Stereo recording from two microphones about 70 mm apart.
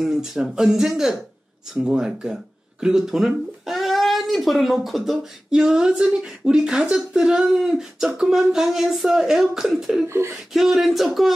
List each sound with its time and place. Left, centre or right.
0.0 s speech: centre
10.0 s a sound: right
10.5 s speech: centre